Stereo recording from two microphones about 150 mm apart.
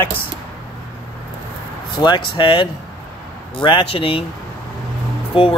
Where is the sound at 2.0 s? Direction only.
30° left (ahead or behind).